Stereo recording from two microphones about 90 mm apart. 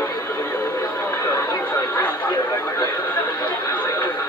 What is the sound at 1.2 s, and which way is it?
Speech, 40° left (ahead or behind).